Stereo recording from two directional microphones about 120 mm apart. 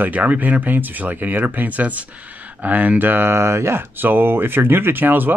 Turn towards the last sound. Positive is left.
turn(degrees=-15)  # may be behind; listen again after turning